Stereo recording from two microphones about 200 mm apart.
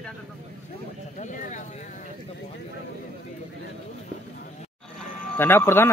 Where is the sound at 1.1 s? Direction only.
40° left (ahead or behind).